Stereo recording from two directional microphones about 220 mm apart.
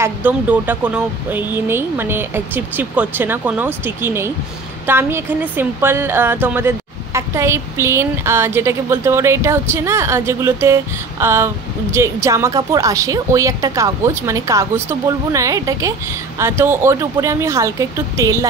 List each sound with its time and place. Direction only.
0.0 s a woman's voice: 10° right (ahead or behind)